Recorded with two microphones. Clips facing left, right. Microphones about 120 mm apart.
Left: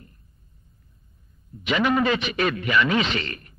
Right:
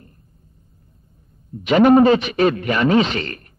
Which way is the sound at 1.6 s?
45° right (ahead or behind).